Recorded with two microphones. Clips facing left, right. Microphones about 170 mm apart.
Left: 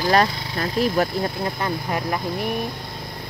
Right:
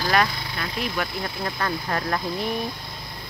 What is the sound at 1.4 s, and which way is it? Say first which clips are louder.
Speech: left 2 dB; 15° left (ahead or behind).